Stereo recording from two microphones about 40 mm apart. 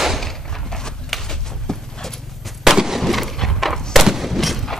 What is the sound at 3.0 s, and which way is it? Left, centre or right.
Wood, centre.